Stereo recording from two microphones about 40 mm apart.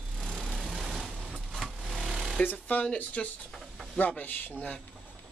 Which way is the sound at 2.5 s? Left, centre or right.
Left.